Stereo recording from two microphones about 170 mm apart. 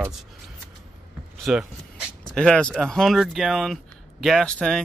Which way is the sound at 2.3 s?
5° left (ahead or behind).